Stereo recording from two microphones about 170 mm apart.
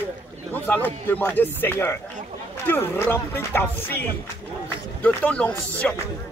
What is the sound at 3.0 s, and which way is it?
Speech, 10° left (ahead or behind).